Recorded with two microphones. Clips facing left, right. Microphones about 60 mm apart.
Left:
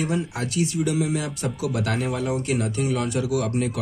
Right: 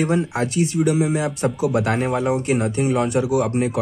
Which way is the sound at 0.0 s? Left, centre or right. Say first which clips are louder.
Right 6 dB; right.